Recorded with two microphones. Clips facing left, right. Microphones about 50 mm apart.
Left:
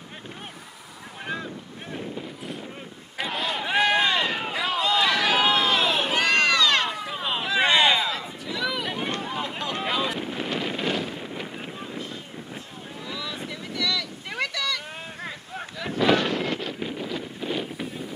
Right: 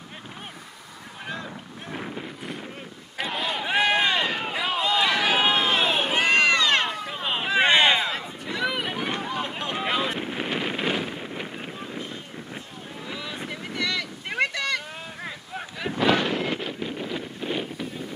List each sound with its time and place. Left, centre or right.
1.9 s wind noise: right
3.2 s run: centre; by 6.9 s right
6.9 s vehicle: centre
7.2 s a sound: right
8.6 s run: right
8.9 s run: centre
9.6 s wind noise: centre
13.0 s boat: right
16.1 s wind noise: centre